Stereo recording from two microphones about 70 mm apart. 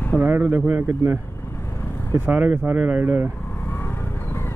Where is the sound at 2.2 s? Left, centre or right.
Right.